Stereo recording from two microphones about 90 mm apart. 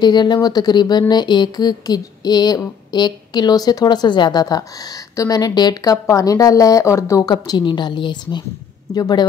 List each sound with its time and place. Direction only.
0.0 s speech: 55° left (ahead or behind); by 7.2 s 35° left (ahead or behind)
7.2 s a woman's voice: 55° left (ahead or behind)
8.9 s speech: 45° left (ahead or behind)